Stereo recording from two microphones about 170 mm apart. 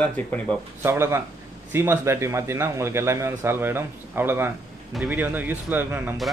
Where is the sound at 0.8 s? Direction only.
15° right (ahead or behind).